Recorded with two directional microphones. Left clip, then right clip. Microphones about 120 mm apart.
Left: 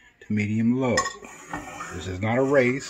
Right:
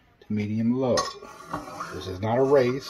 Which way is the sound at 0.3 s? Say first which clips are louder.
Left 2 dB; 25° left (ahead or behind).